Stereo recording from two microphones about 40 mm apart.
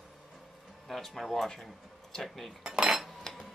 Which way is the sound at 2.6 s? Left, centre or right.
Centre.